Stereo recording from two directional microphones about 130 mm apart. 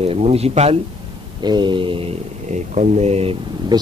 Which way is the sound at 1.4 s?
35° right (ahead or behind).